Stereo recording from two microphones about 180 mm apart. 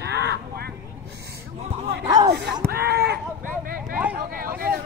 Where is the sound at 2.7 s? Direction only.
60° right (ahead or behind).